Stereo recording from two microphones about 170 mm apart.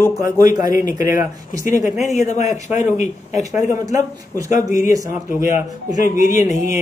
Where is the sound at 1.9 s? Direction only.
45° left (ahead or behind).